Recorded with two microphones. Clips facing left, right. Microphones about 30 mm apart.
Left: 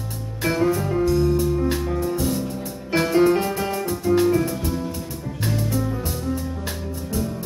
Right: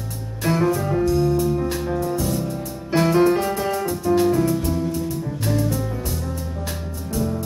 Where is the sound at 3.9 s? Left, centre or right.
Centre.